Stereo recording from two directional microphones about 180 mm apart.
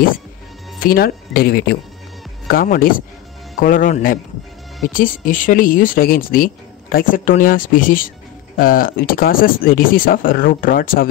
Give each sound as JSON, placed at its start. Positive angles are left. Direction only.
{"t": 0.8, "sound": "speech", "side_deg": 55}